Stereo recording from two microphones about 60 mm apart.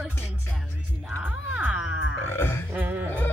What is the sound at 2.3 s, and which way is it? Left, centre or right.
Speech, left.